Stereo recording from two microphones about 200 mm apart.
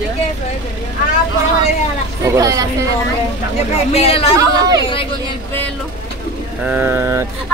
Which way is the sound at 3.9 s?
30° left (ahead or behind).